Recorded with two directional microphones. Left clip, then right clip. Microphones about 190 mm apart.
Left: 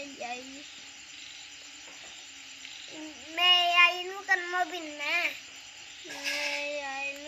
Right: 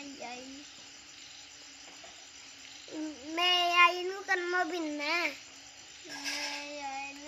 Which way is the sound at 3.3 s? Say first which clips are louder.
Left 4 dB; 55° right (ahead or behind).